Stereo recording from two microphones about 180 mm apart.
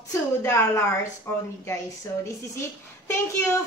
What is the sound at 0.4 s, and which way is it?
Speech, 15° left (ahead or behind).